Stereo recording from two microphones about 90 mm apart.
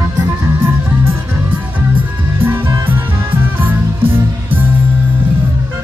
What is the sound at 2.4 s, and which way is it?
Music, 25° right (ahead or behind).